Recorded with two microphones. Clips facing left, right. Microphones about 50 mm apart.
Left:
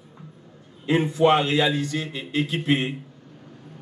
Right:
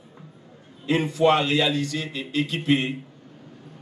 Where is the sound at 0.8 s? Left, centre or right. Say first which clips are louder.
Left 1 dB; centre.